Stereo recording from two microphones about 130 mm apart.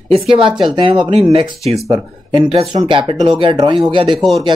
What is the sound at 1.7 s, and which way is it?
Speech, 45° right (ahead or behind).